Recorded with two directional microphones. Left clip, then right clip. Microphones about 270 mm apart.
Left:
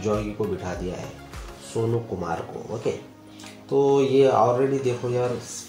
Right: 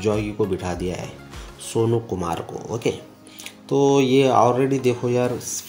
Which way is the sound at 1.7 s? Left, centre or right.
Right.